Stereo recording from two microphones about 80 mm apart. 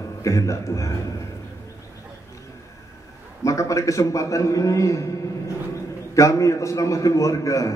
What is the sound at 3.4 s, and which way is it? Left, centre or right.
A man's voice, left.